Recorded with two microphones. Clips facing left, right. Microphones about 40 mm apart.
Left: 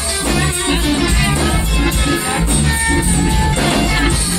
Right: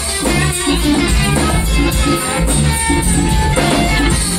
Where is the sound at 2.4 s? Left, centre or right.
Centre.